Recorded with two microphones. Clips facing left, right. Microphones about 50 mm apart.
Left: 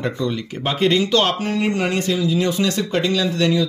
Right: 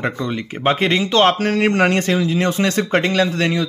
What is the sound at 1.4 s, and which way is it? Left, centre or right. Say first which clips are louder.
Speech: right 5 dB; right.